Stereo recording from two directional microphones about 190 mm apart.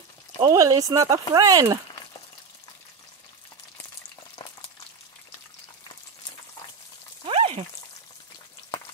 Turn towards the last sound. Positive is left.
turn(degrees=-30)  # may be behind; listen again after turning